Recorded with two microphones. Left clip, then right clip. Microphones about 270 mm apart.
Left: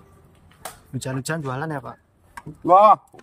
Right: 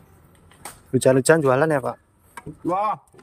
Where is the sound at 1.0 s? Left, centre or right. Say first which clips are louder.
Right 13 dB; centre.